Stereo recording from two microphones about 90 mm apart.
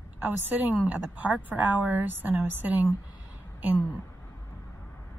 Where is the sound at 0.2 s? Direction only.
20° right (ahead or behind).